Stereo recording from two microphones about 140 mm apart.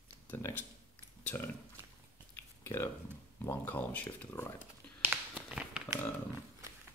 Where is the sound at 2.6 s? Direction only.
20° left (ahead or behind).